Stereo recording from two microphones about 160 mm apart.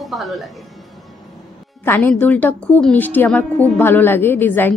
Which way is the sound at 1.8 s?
10° left (ahead or behind).